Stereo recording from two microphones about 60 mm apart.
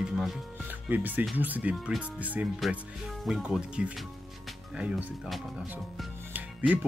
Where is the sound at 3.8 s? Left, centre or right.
Centre.